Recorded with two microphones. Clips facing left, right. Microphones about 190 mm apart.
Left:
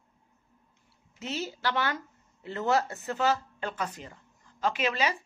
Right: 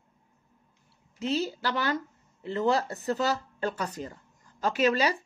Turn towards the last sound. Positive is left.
turn(degrees=-40)  # may be behind; listen again after turning